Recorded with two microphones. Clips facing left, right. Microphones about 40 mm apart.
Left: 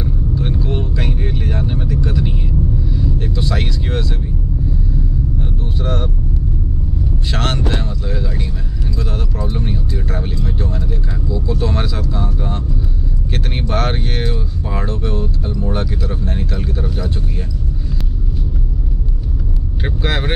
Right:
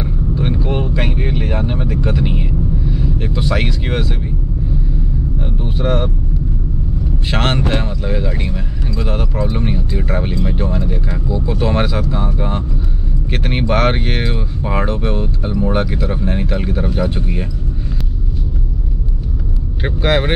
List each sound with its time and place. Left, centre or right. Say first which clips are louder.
0.3 s vehicle: right 3 dB; right
5.6 s speech: right 7 dB; right
7.2 s speech: right 4 dB; right
19.8 s speech: right 5 dB; centre